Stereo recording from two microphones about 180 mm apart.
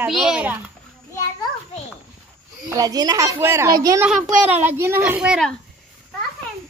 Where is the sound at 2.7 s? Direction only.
20° right (ahead or behind).